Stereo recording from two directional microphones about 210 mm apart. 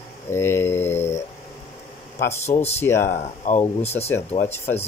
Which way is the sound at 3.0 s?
35° left (ahead or behind).